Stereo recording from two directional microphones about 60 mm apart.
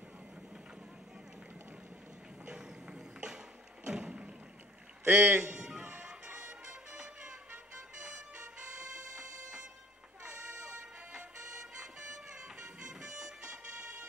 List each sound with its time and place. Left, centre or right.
2.4 s music: centre
3.8 s thump: centre
5.0 s a man's voice: right
5.4 s music: centre
8.7 s music: centre
11.8 s music: centre